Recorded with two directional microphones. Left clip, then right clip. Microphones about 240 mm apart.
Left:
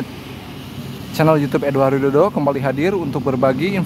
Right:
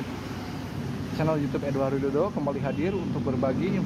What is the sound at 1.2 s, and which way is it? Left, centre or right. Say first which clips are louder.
Speech: left 13 dB; left.